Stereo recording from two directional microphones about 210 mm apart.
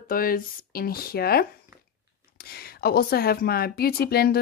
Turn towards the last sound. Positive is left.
turn(degrees=45)  # may be behind; listen again after turning